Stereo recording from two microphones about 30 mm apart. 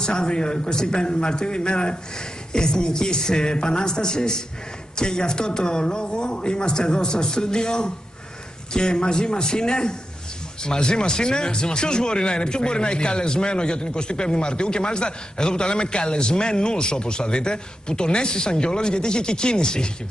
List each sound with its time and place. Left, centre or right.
0.0 s speech: left